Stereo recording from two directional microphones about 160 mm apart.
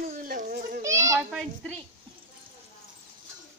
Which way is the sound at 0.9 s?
20° right (ahead or behind).